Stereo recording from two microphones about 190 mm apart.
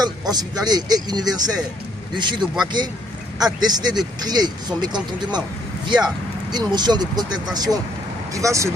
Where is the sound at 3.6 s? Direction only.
20° right (ahead or behind).